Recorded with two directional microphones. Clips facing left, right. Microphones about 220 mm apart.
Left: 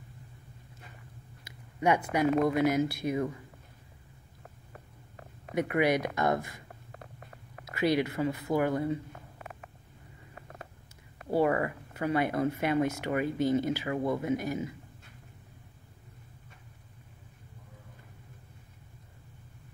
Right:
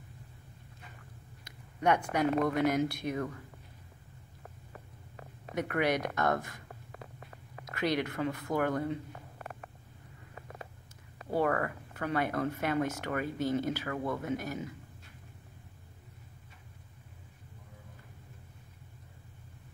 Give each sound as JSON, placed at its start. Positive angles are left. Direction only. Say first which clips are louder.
{"t": 1.4, "sound": "speech", "louder": "left 2 dB", "side_deg": 10}
{"t": 5.5, "sound": "speech", "louder": "left 4 dB", "side_deg": 10}
{"t": 7.6, "sound": "speech", "louder": "left 4 dB", "side_deg": 10}
{"t": 11.2, "sound": "speech", "louder": "left 3 dB", "side_deg": 10}